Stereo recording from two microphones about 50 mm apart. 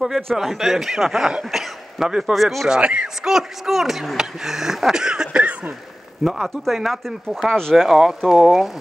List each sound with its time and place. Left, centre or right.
0.4 s speech: centre
2.3 s speech: centre
2.8 s speech: right
3.3 s speech: centre